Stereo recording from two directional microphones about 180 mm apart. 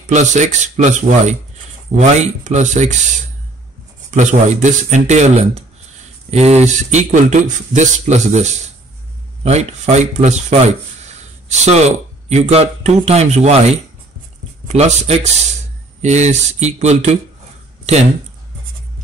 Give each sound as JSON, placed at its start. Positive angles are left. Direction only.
{"t": 0.0, "sound": "speech", "side_deg": -40}
{"t": 4.1, "sound": "speech", "side_deg": -45}